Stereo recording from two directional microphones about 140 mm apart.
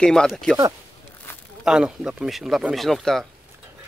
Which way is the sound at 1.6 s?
5° right (ahead or behind).